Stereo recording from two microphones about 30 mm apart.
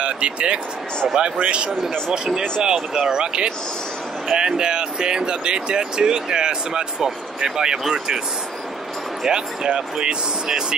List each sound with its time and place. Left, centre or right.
0.0 s speech: right
2.6 s speech: right
9.3 s speech: right